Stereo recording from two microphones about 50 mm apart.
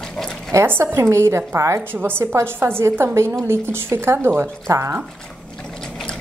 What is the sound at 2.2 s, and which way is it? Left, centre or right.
Speech, right.